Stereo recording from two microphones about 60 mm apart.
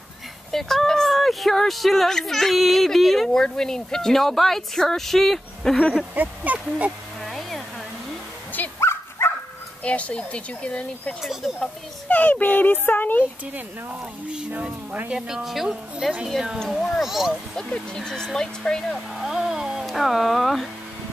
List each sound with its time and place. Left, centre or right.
0.5 s speech: centre
6.1 s speech: right
7.2 s a sound: centre
8.7 s dog: left
9.8 s speech: left
13.8 s speech: centre
17.6 s speech: centre
19.1 s a sound: centre